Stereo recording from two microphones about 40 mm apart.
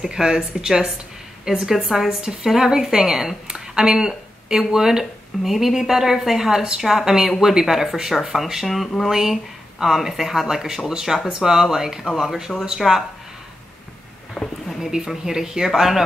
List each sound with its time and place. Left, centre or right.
0.0 s a woman's voice: centre
14.3 s a sound: centre
14.8 s speech: centre